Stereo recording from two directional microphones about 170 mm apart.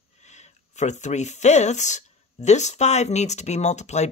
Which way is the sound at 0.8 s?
45° left (ahead or behind).